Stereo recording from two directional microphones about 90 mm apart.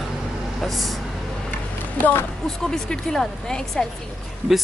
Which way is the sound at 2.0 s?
25° left (ahead or behind).